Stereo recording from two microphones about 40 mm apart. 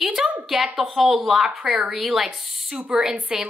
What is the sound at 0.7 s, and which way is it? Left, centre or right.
A woman's voice, centre.